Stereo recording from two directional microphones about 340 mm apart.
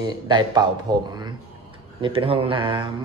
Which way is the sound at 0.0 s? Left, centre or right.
Centre.